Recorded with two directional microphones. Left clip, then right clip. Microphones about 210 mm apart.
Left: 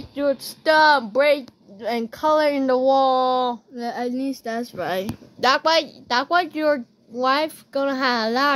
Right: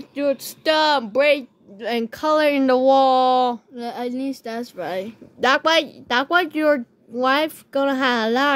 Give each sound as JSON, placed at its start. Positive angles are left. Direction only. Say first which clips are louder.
{"t": 0.1, "sound": "speech", "louder": "even", "side_deg": -15}
{"t": 3.7, "sound": "speech", "louder": "left 1 dB", "side_deg": 5}
{"t": 5.4, "sound": "a woman's voice", "louder": "right 1 dB", "side_deg": -35}